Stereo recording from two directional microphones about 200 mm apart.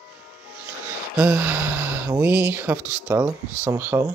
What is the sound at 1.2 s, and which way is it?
Speech, 10° right (ahead or behind).